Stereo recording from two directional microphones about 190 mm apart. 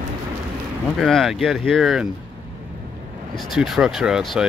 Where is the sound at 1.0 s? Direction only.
Centre (ahead or behind).